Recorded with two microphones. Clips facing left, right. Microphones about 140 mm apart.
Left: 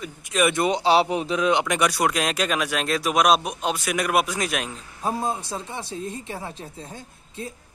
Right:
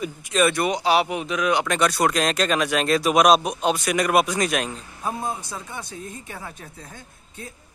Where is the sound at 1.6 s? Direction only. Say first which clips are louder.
Right 1 dB; 10° left (ahead or behind).